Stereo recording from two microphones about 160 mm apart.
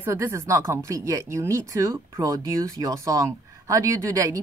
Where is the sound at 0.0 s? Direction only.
15° right (ahead or behind).